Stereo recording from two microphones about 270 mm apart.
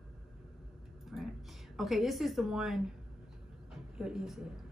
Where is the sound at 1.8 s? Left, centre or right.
Centre.